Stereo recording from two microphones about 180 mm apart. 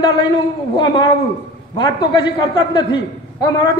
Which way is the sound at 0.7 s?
25° left (ahead or behind).